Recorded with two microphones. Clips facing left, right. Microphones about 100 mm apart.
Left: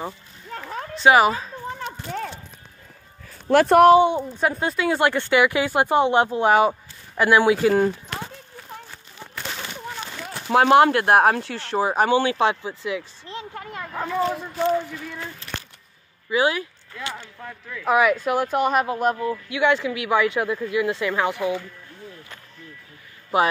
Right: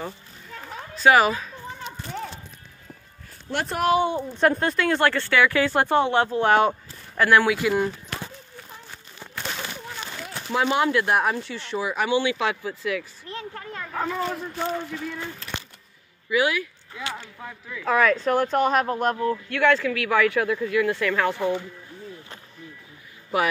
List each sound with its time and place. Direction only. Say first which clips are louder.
0.5 s a sound: left 6 dB; 50° left (ahead or behind)
0.9 s speech: left 2 dB; 20° left (ahead or behind)
3.4 s speech: left 13 dB; 80° left
3.9 s speech: left 6 dB; 20° left (ahead or behind)
4.3 s speech: right 2 dB; 5° left (ahead or behind)
7.5 s speech: left 5 dB; 40° left (ahead or behind)
10.5 s speech: left 7 dB; 60° left (ahead or behind)
11.7 s speech: left 4 dB; 40° left (ahead or behind); by 13.8 s 20° left (ahead or behind)
13.9 s speech: left 3 dB; centre (ahead or behind)
16.3 s speech: left 1 dB; 30° left (ahead or behind)
16.9 s speech: even; 5° right (ahead or behind)
17.8 s speech: left 1 dB; 15° left (ahead or behind)
19.5 s speech: even; 15° left (ahead or behind)
21.4 s speech: even; 20° right (ahead or behind)